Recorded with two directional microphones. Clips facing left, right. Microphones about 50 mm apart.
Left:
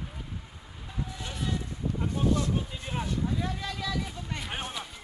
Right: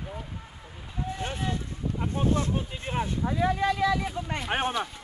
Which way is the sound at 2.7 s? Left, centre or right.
Right.